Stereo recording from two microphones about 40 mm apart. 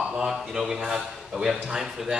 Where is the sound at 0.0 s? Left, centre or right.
Centre.